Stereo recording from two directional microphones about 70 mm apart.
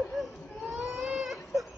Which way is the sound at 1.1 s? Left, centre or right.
Centre.